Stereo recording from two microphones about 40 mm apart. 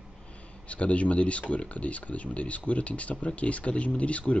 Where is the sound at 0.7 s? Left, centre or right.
Left.